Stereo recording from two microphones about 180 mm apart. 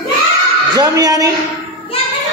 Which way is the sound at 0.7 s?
20° right (ahead or behind).